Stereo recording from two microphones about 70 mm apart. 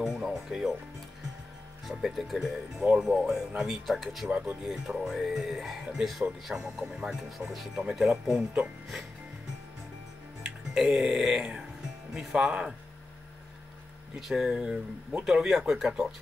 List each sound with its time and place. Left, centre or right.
0.0 s speech: centre
1.9 s speech: centre
10.4 s music: centre
12.1 s speech: centre
14.2 s speech: centre